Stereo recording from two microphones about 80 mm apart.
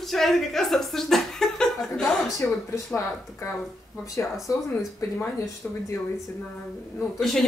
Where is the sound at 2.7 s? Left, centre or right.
Left.